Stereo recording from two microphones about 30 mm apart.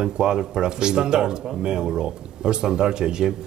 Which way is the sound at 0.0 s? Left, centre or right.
Right.